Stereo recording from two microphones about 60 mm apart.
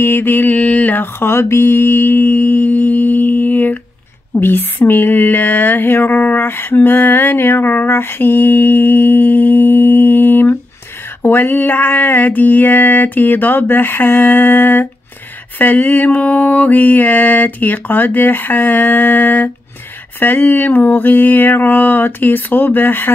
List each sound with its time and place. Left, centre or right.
0.0 s mantra: left
4.3 s a sound: left
11.2 s mantra: left